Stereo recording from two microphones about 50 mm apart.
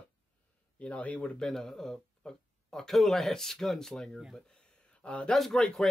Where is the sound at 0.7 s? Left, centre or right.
Left.